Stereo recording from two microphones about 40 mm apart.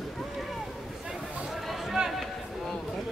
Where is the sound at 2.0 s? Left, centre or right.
Centre.